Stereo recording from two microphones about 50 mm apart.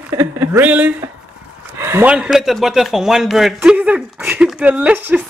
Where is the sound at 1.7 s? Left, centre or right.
Right.